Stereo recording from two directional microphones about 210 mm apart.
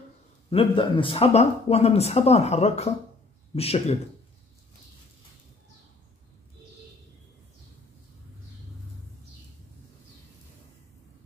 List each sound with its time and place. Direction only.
0.5 s speech: 25° left (ahead or behind)